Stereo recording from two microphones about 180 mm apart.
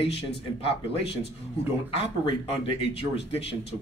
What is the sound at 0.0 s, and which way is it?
Speech, 30° left (ahead or behind).